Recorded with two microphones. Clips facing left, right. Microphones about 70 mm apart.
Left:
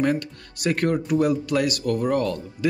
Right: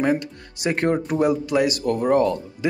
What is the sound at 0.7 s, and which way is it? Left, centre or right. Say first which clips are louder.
Speech: right 1 dB; right.